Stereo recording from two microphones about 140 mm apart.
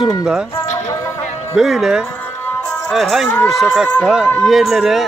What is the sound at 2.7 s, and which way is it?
Music, centre (ahead or behind).